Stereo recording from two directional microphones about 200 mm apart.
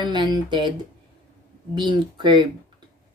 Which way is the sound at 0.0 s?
20° right (ahead or behind).